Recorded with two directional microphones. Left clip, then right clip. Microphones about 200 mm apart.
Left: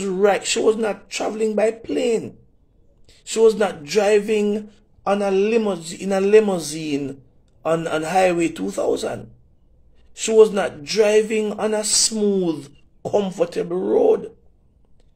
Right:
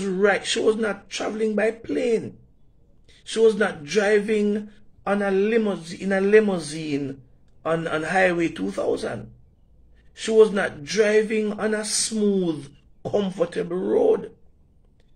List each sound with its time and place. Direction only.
0.0 s a man's voice: 10° right (ahead or behind)